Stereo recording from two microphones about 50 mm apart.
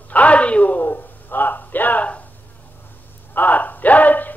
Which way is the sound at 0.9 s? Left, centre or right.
Left.